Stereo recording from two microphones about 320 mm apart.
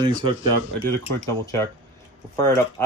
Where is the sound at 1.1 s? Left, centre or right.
Centre.